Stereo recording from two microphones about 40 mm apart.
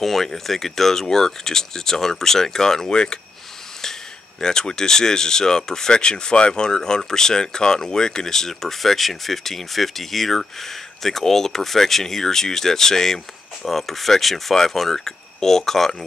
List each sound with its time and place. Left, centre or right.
0.0 s speech: centre
4.4 s speech: centre